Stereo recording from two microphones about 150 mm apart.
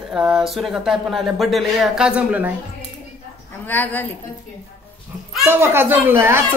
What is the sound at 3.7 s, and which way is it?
Speech, 10° left (ahead or behind).